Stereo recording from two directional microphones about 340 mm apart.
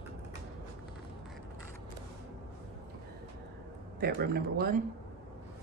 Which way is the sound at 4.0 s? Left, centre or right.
Right.